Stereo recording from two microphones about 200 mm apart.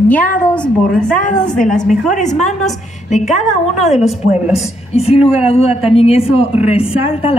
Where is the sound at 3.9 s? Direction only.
5° right (ahead or behind).